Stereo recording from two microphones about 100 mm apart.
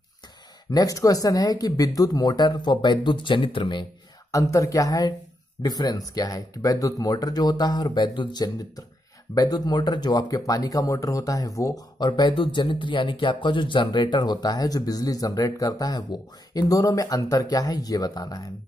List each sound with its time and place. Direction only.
0.7 s speech: 35° left (ahead or behind)
4.3 s speech: 35° left (ahead or behind)